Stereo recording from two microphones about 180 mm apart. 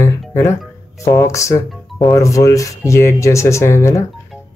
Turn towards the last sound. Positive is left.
turn(degrees=15)  # may be behind; listen again after turning